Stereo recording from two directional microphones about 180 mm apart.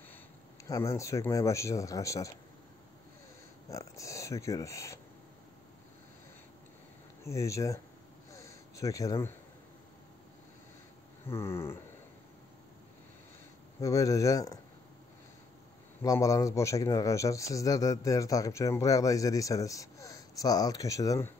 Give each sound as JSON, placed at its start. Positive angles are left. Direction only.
{"t": 0.7, "sound": "a man's voice", "side_deg": 15}
{"t": 3.7, "sound": "speech", "side_deg": 15}
{"t": 7.2, "sound": "a man's voice", "side_deg": 15}
{"t": 8.3, "sound": "a sound", "side_deg": 15}
{"t": 11.2, "sound": "a man's voice", "side_deg": 15}
{"t": 13.7, "sound": "a man's voice", "side_deg": 20}
{"t": 16.0, "sound": "a man's voice", "side_deg": 20}